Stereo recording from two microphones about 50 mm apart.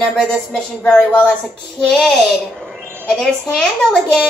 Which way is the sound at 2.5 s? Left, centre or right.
Centre.